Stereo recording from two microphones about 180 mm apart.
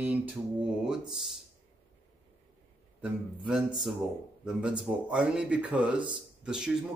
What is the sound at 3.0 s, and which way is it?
Speech, 5° right (ahead or behind).